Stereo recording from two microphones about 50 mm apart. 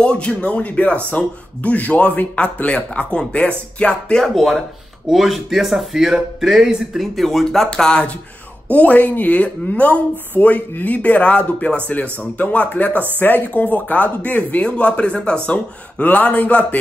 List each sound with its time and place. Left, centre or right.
0.0 s speech: left
4.2 s speech: centre
7.0 s speech: centre
8.6 s speech: left
16.0 s speech: left